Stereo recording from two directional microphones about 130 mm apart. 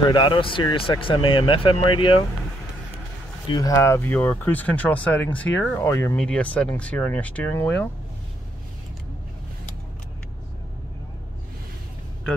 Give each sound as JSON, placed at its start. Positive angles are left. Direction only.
{"t": 0.0, "sound": "speech", "side_deg": 35}
{"t": 3.4, "sound": "speech", "side_deg": 30}